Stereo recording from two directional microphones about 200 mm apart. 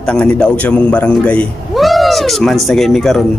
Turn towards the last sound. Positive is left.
turn(degrees=0)  # may be behind; listen again after turning